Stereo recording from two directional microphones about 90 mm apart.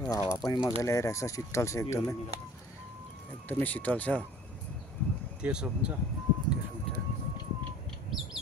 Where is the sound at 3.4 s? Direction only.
20° left (ahead or behind).